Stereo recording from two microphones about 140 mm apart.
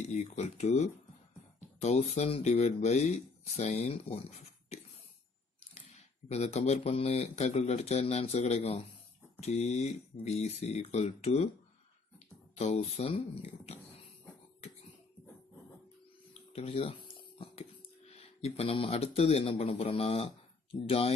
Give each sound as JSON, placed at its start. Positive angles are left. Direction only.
{"t": 0.0, "sound": "speech", "side_deg": 55}
{"t": 6.2, "sound": "speech", "side_deg": 50}
{"t": 12.5, "sound": "speech", "side_deg": 50}
{"t": 16.5, "sound": "speech", "side_deg": 45}
{"t": 18.1, "sound": "speech", "side_deg": 50}